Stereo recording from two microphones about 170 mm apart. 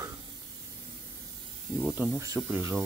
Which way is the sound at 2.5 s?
15° right (ahead or behind).